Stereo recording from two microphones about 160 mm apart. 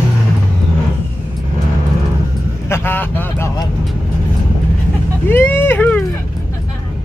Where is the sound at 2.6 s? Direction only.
15° left (ahead or behind).